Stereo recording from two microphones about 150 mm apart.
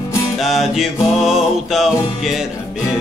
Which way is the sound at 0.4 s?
Centre (ahead or behind).